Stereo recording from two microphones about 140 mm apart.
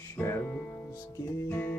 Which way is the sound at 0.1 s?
15° left (ahead or behind).